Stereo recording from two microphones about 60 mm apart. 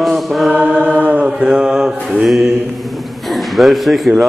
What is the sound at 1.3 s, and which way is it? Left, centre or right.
Mantra, centre.